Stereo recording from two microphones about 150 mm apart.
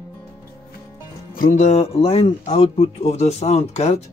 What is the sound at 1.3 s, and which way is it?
Speech, 60° left (ahead or behind).